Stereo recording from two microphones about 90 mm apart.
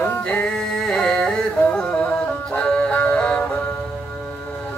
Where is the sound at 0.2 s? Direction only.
15° left (ahead or behind).